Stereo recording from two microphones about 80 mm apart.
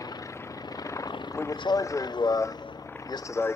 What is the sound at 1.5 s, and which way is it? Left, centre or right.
Speech, left.